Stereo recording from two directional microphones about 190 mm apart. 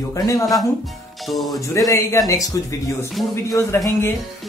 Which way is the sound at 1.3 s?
Centre (ahead or behind).